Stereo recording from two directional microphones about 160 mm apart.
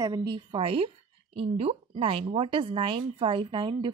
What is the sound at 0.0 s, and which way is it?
Speech, 25° right (ahead or behind).